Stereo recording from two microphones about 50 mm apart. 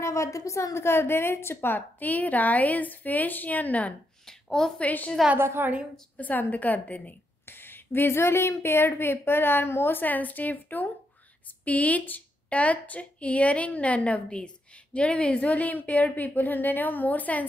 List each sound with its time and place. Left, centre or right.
0.0 s a woman's voice: left
4.3 s a woman's voice: centre
4.7 s a woman's voice: left
5.4 s a woman's voice: right
6.1 s a woman's voice: left
7.4 s a woman's voice: left